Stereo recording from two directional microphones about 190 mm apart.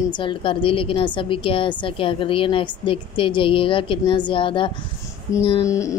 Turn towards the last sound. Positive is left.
turn(degrees=15)  # may be behind; listen again after turning